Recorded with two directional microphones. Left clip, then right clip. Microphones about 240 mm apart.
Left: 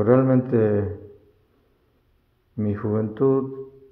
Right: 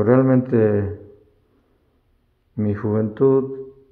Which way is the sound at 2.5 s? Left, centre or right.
Centre.